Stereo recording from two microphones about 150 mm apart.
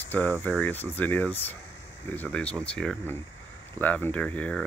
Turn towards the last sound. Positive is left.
turn(degrees=10)  # may be behind; listen again after turning